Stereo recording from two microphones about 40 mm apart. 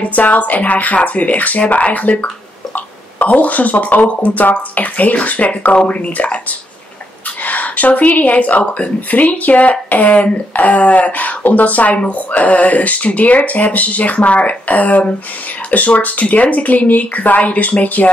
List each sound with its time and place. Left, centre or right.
0.0 s speech: left
7.4 s speech: left